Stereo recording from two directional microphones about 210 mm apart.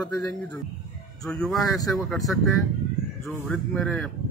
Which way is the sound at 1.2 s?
Centre (ahead or behind).